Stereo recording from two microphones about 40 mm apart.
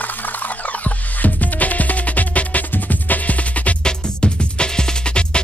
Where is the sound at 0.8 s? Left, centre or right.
Left.